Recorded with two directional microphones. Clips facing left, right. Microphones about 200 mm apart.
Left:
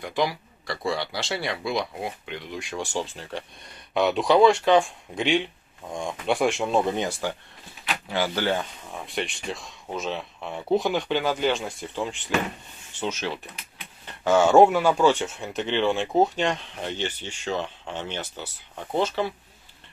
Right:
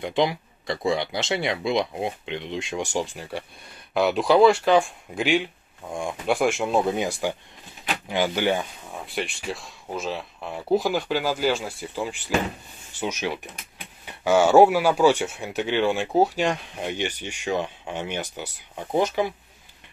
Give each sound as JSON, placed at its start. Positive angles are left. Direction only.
{"t": 0.0, "sound": "speech", "side_deg": -20}
{"t": 8.9, "sound": "speech", "side_deg": -5}